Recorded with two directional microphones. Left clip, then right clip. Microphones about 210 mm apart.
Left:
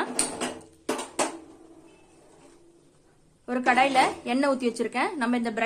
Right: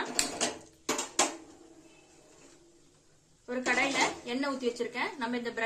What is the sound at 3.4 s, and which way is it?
Speech, 50° left (ahead or behind).